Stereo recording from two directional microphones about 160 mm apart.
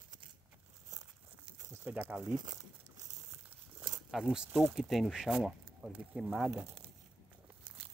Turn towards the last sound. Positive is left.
turn(degrees=-10)  # may be behind; listen again after turning